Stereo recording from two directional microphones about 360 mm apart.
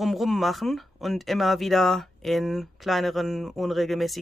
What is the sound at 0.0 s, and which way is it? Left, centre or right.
Speech, centre.